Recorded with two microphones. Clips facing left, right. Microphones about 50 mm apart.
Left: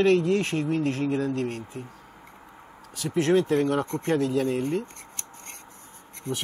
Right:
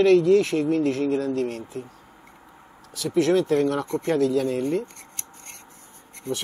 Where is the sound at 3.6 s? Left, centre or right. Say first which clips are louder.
Right 2 dB; centre.